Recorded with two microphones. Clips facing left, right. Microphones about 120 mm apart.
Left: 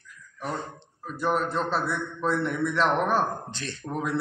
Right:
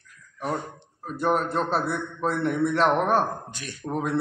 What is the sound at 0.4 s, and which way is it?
A man's voice, 10° right (ahead or behind).